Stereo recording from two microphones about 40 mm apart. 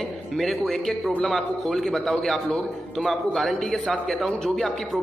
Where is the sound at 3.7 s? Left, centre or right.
Centre.